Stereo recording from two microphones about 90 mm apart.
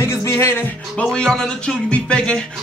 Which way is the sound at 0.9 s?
10° left (ahead or behind).